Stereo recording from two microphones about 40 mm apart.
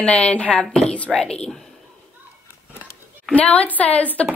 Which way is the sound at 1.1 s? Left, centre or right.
Centre.